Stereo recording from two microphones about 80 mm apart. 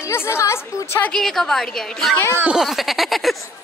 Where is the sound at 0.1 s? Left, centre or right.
Left.